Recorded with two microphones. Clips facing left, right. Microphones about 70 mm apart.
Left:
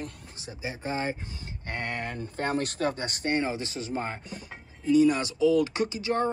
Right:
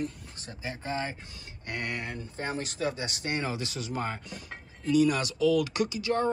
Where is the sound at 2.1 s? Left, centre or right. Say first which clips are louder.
Left 5 dB; left.